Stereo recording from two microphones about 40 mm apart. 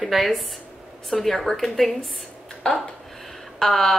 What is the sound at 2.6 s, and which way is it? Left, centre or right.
A woman's voice, centre.